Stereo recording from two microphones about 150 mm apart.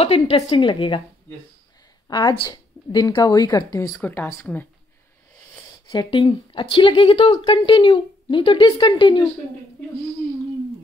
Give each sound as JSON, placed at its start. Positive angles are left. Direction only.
{"t": 0.0, "sound": "speech", "side_deg": 40}
{"t": 2.0, "sound": "speech", "side_deg": 25}
{"t": 4.0, "sound": "speech", "side_deg": 10}
{"t": 5.9, "sound": "speech", "side_deg": 35}